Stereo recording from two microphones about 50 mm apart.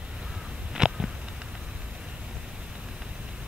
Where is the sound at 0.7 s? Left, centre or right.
Centre.